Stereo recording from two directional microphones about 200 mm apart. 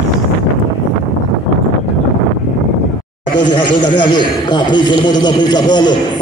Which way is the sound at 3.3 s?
25° left (ahead or behind).